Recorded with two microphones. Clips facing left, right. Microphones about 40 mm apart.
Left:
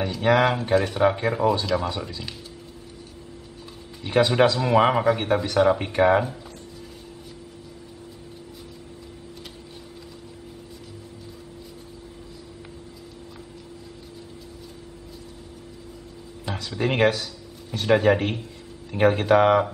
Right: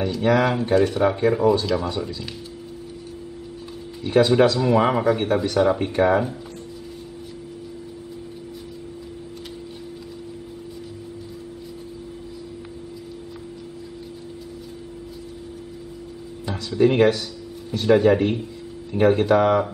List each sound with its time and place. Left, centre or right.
0.0 s speech: centre
4.0 s speech: centre
16.4 s speech: centre
19.3 s speech: left